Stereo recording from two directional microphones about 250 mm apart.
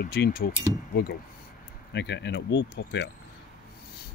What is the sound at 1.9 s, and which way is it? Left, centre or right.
Speech, left.